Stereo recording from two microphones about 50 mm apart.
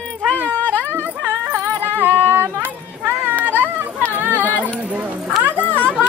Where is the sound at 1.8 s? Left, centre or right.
Right.